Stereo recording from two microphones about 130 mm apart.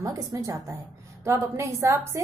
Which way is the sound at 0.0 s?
25° right (ahead or behind).